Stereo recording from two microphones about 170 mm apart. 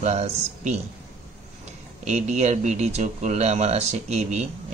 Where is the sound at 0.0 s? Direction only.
40° right (ahead or behind).